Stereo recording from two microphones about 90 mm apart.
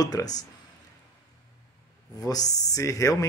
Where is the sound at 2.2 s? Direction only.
45° left (ahead or behind).